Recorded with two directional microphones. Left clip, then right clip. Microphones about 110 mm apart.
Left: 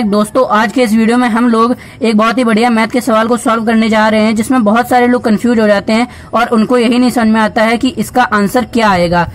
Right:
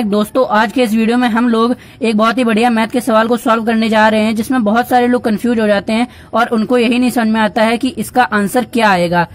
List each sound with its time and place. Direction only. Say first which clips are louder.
0.1 s speech: left 2 dB; 25° right (ahead or behind)